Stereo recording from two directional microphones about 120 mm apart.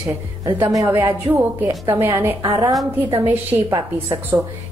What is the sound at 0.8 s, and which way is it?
A woman's voice, 20° right (ahead or behind).